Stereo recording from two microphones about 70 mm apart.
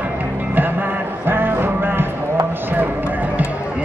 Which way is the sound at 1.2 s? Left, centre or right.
Right.